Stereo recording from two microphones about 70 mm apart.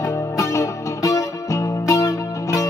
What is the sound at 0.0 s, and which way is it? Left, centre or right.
Music, left.